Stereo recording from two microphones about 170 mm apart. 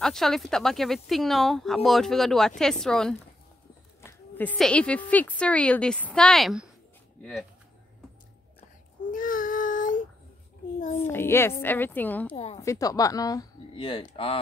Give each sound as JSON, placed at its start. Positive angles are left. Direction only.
{"t": 0.0, "sound": "a woman's voice", "side_deg": 0}
{"t": 9.1, "sound": "child singing", "side_deg": 55}
{"t": 11.1, "sound": "a woman's voice", "side_deg": 15}
{"t": 12.5, "sound": "speech", "side_deg": 20}